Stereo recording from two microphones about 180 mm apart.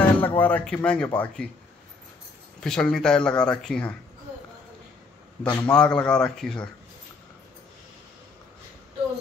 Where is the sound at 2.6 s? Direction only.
5° left (ahead or behind).